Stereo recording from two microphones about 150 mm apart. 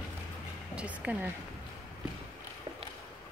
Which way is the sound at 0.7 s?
10° right (ahead or behind).